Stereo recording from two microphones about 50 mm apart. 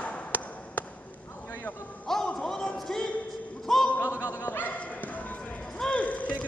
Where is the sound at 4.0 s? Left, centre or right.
Left.